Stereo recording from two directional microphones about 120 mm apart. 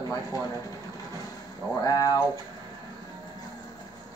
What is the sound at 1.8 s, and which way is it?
Speech, 30° left (ahead or behind).